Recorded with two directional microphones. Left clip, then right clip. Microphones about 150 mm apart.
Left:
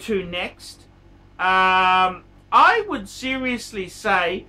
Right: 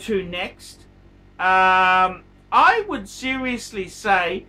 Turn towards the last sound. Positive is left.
turn(degrees=-5)  # may be behind; listen again after turning